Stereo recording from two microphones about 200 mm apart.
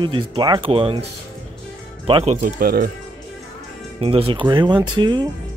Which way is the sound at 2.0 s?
30° right (ahead or behind).